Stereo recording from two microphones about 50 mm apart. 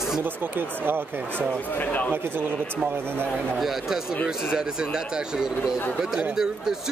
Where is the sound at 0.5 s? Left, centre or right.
Right.